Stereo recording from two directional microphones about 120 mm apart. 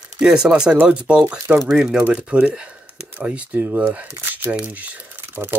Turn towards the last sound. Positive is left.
turn(degrees=-20)  # may be behind; listen again after turning